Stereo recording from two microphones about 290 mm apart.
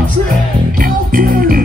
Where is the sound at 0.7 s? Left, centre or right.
Right.